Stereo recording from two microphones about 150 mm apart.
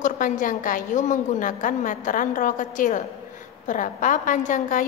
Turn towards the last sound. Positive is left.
turn(degrees=60)  # may be behind; listen again after turning